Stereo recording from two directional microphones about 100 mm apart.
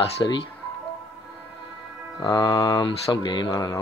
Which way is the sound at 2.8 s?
50° left (ahead or behind).